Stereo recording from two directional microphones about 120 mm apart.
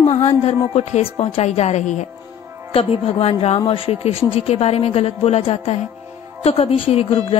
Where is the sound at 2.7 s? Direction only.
55° left (ahead or behind).